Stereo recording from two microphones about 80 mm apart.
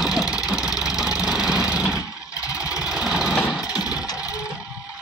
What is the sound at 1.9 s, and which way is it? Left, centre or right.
Vehicle, left.